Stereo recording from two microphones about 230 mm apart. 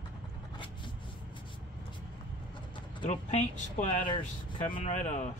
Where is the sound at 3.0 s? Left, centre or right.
Left.